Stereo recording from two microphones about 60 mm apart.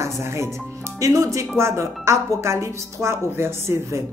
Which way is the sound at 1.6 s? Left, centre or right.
Right.